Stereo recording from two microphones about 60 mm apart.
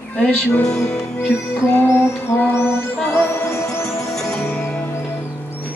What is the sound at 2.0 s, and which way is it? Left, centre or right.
Music, left.